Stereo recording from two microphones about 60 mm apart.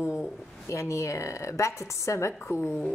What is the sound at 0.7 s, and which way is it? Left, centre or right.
A woman's voice, left.